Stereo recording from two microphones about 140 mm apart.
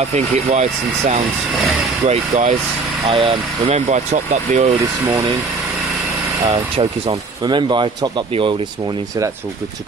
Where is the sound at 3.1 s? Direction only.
40° right (ahead or behind).